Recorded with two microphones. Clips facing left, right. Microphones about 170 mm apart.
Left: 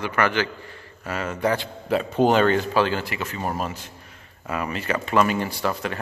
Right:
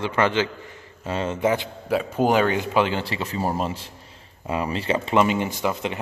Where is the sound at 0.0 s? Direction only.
25° right (ahead or behind).